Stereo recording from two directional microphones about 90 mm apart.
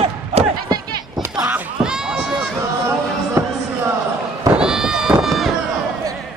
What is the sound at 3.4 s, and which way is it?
Basketball bounce, 35° right (ahead or behind).